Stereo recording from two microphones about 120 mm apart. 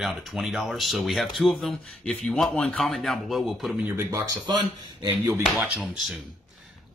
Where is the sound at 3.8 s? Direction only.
20° right (ahead or behind).